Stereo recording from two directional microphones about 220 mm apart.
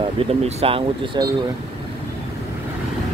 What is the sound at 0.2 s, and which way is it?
Speech, 25° right (ahead or behind).